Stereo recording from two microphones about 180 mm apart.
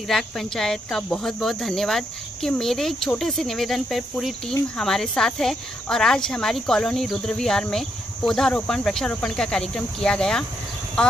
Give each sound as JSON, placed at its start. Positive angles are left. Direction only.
{"t": 0.1, "sound": "speech", "side_deg": 0}